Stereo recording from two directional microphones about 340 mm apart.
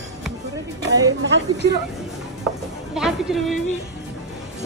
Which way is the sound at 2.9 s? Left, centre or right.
Centre.